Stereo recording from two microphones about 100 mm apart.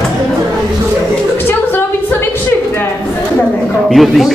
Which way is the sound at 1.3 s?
20° left (ahead or behind).